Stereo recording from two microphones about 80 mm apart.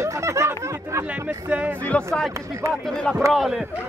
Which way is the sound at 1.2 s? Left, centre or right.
Centre.